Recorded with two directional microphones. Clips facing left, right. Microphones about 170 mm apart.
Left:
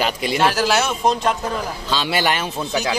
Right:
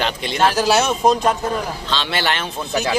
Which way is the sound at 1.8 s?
10° left (ahead or behind).